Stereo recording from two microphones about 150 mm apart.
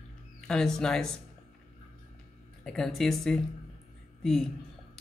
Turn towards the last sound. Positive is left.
turn(degrees=0)  # may be behind; listen again after turning